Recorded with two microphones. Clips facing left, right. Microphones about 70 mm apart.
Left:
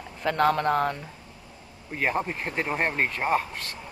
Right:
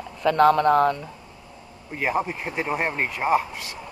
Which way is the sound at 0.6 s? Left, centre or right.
Right.